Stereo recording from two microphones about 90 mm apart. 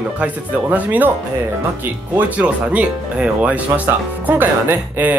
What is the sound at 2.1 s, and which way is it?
Speech, 15° right (ahead or behind).